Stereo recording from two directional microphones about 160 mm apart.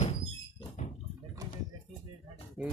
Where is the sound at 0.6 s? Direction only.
45° left (ahead or behind).